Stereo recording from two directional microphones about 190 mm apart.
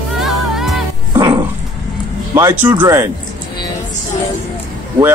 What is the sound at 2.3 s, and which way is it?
Speech, 10° right (ahead or behind).